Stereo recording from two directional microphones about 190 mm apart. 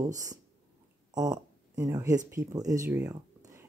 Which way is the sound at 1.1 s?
20° right (ahead or behind).